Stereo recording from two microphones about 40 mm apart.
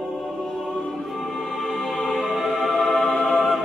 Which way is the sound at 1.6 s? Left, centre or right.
Centre.